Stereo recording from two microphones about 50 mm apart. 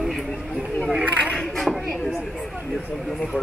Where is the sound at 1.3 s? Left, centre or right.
Centre.